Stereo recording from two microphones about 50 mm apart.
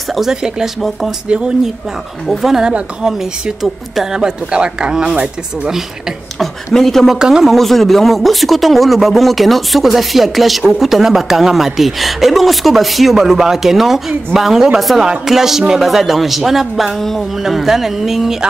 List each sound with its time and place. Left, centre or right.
0.1 s speech: centre
2.2 s a woman's voice: centre
4.2 s speech: centre
6.4 s a woman's voice: centre
7.2 s speech: centre
7.5 s a woman's voice: centre